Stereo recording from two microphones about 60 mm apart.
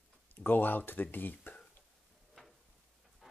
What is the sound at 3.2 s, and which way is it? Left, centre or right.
Pant, centre.